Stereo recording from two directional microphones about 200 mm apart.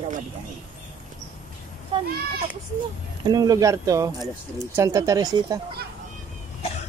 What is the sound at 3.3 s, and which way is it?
Speech, 20° right (ahead or behind).